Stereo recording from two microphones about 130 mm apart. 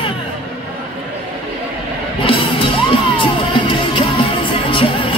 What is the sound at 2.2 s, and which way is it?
Music, 45° left (ahead or behind).